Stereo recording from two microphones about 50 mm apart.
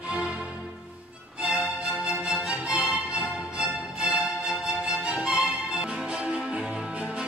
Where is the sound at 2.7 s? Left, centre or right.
Right.